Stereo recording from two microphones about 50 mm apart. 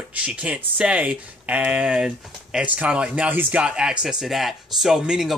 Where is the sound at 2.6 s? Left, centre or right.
Right.